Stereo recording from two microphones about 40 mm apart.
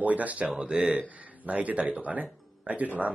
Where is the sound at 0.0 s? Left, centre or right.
Right.